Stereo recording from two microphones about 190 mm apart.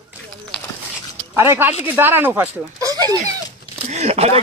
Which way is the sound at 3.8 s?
35° right (ahead or behind).